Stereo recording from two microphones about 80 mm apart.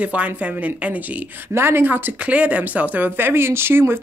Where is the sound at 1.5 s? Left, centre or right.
Right.